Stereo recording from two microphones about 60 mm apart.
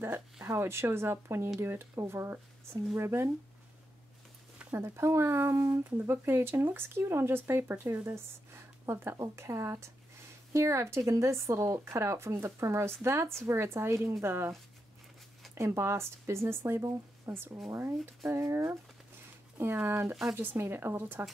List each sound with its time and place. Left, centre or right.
0.5 s speech: right
4.6 s speech: right
5.9 s speech: right
15.5 s speech: right
19.9 s speech: right